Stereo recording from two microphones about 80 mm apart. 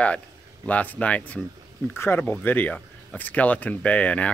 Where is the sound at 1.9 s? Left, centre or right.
Left.